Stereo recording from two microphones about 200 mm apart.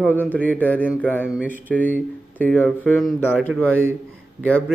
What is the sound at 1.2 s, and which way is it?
Speech, 5° right (ahead or behind).